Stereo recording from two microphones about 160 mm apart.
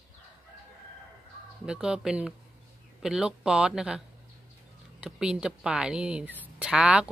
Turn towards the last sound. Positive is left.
turn(degrees=-5)  # may be behind; listen again after turning